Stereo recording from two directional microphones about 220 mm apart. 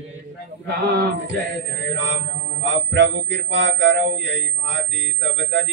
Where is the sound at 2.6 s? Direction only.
55° right (ahead or behind).